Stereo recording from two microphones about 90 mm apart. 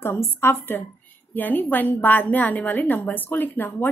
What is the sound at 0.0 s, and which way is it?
A woman's voice, 25° left (ahead or behind).